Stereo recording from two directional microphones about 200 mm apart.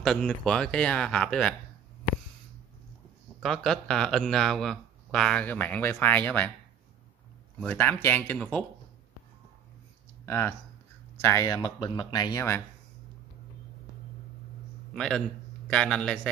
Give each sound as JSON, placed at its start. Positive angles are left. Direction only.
{"t": 0.0, "sound": "speech", "side_deg": 5}
{"t": 3.4, "sound": "speech", "side_deg": 0}
{"t": 7.6, "sound": "speech", "side_deg": 10}
{"t": 10.2, "sound": "speech", "side_deg": 10}
{"t": 15.0, "sound": "speech", "side_deg": 5}